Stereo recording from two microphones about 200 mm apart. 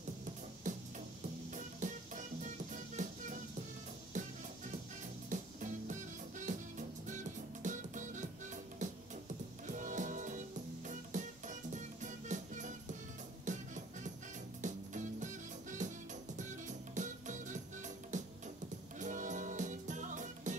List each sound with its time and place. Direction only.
0.7 s music: 40° right (ahead or behind)
7.6 s music: 40° right (ahead or behind)
9.7 s music: 40° right (ahead or behind)